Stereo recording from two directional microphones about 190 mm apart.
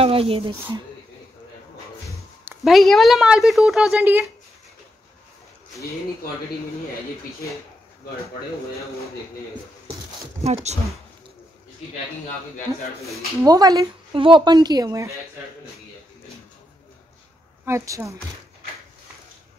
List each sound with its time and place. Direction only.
0.0 s speech: 30° right (ahead or behind)
2.4 s a sound: 10° right (ahead or behind)
2.7 s a woman's voice: centre (ahead or behind)
10.4 s speech: 35° right (ahead or behind)
13.4 s speech: 20° right (ahead or behind)
17.6 s a woman's voice: 15° right (ahead or behind)